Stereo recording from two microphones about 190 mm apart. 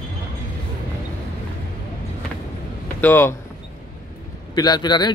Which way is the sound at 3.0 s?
10° left (ahead or behind).